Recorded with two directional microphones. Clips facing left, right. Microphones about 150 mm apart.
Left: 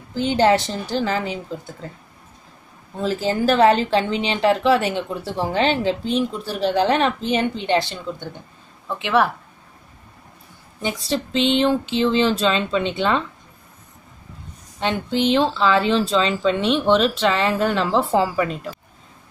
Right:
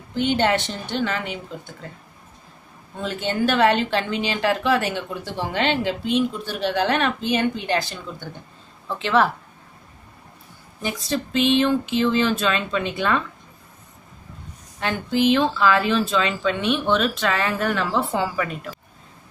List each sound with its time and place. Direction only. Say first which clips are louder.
0.1 s a woman's voice: left 3 dB; 35° left (ahead or behind)
3.0 s a woman's voice: left 3 dB; 35° left (ahead or behind); by 9.3 s 15° left (ahead or behind)
10.8 s speech: left 2 dB; 25° left (ahead or behind)
14.8 s speech: even; 25° left (ahead or behind)